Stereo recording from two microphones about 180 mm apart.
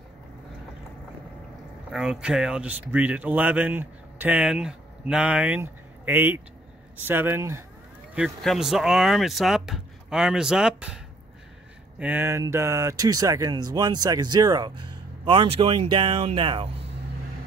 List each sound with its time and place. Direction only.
1.9 s speech: 5° right (ahead or behind)
8.1 s speech: centre (ahead or behind)
12.0 s speech: 10° right (ahead or behind); by 16.7 s 30° right (ahead or behind)